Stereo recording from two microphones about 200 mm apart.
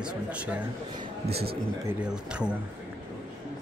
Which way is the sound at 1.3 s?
50° right (ahead or behind).